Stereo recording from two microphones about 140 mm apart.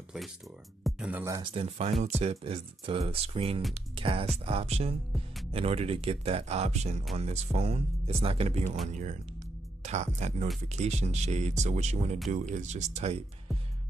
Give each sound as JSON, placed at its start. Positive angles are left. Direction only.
{"t": 0.8, "sound": "speech", "side_deg": -5}
{"t": 1.4, "sound": "speech", "side_deg": -45}
{"t": 8.8, "sound": "speech", "side_deg": -60}